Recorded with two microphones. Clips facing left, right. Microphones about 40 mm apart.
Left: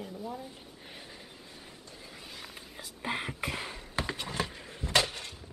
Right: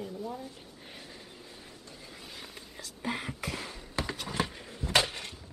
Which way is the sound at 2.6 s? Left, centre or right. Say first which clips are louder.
Even; centre.